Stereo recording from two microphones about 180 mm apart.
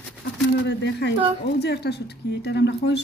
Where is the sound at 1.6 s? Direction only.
65° left (ahead or behind).